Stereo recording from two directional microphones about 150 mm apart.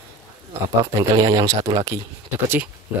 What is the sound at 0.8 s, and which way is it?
Speech, 25° right (ahead or behind).